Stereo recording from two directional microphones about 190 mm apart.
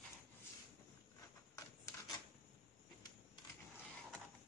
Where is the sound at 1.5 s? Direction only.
20° left (ahead or behind).